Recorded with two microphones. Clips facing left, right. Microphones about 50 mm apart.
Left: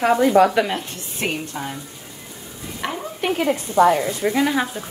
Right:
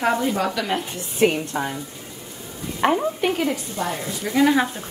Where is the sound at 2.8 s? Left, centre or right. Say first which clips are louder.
Right 8 dB; right.